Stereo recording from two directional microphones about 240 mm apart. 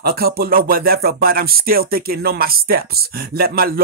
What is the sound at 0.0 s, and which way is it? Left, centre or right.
Speech, right.